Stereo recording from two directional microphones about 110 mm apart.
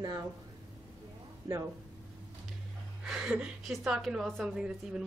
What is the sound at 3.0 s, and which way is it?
A woman's voice, 5° right (ahead or behind).